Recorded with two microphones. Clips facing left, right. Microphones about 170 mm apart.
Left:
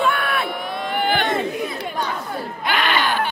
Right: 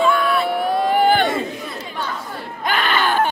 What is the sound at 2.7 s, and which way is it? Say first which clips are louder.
Baby cry: right 2 dB; 45° right (ahead or behind).